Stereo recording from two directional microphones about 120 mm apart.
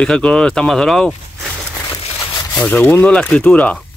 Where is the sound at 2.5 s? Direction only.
10° left (ahead or behind).